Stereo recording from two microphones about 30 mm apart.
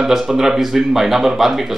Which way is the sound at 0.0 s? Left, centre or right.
Centre.